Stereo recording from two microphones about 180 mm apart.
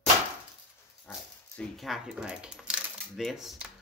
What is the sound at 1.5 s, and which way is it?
Speech, centre (ahead or behind).